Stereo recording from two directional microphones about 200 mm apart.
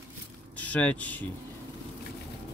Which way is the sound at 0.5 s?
5° left (ahead or behind).